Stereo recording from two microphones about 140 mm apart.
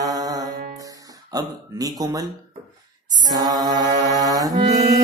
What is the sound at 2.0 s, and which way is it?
Speech, 25° right (ahead or behind).